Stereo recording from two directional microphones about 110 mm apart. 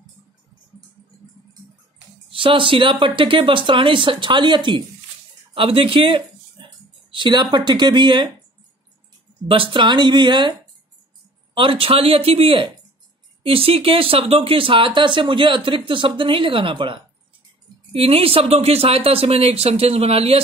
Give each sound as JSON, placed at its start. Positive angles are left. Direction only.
{"t": 2.3, "sound": "speech", "side_deg": -50}
{"t": 9.5, "sound": "speech", "side_deg": -50}
{"t": 11.5, "sound": "speech", "side_deg": -55}